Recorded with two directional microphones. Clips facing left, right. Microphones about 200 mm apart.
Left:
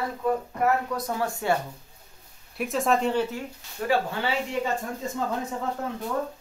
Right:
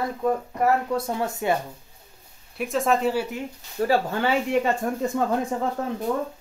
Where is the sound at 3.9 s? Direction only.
45° right (ahead or behind).